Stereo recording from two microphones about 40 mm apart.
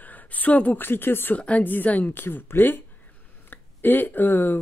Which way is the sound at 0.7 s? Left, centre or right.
Left.